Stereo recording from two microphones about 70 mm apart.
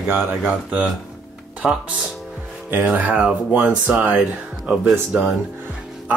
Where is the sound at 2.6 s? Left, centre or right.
Right.